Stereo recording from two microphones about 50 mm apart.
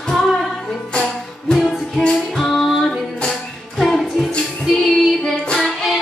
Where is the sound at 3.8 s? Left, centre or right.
Centre.